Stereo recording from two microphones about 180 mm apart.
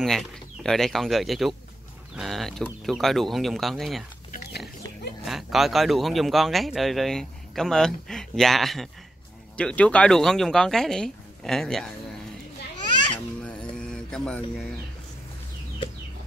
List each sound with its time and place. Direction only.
0.0 s speech: centre (ahead or behind)
4.3 s pig: 65° left (ahead or behind)
5.2 s speech: centre (ahead or behind)
13.4 s mantra: 5° left (ahead or behind)